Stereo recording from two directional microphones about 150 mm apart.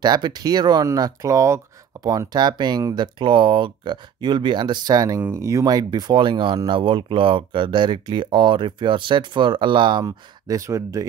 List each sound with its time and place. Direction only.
0.0 s speech: 30° right (ahead or behind)